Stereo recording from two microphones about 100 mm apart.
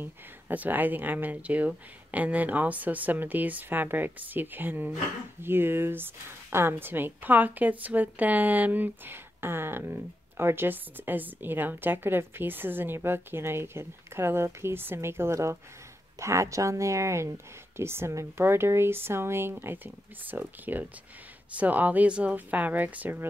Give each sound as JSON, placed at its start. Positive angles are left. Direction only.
{"t": 0.0, "sound": "speech", "side_deg": -20}